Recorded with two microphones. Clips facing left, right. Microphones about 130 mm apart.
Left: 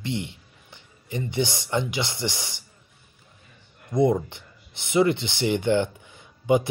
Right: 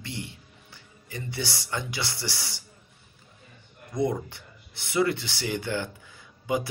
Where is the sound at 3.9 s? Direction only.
20° left (ahead or behind).